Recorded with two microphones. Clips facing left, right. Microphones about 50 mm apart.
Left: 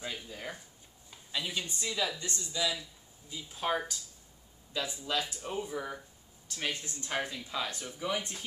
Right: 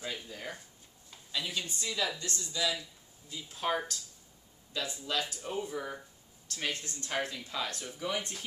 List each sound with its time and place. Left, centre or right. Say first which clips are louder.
0.3 s a sound: even; centre
1.3 s a woman's voice: even; centre
2.5 s speech: even; centre
6.7 s speech: even; centre
7.1 s speech: even; centre